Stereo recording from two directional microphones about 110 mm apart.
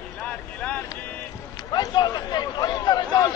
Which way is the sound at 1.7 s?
35° left (ahead or behind).